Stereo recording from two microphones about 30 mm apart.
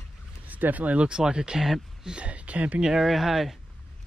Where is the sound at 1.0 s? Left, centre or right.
Right.